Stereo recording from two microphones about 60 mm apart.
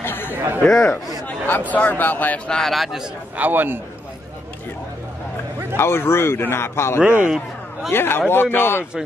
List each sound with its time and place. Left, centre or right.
0.0 s chatter: left
0.3 s chatter: right
0.7 s a man's voice: centre
1.7 s speech: left
2.5 s speech: centre
3.3 s a man's voice: right
5.8 s a man's voice: left
7.2 s a sound: centre
7.9 s a man's voice: left